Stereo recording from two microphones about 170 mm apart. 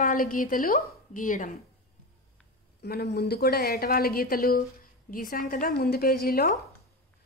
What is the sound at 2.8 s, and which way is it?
A woman's voice, 70° left (ahead or behind).